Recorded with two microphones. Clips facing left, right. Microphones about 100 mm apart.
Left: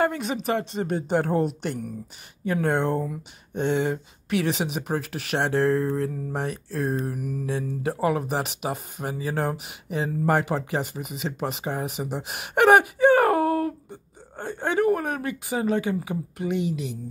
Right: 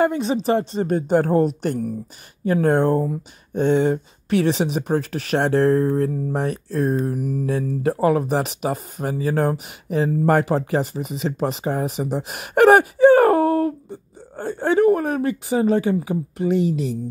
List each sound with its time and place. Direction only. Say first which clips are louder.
0.0 s speech: right 5 dB; 25° right (ahead or behind)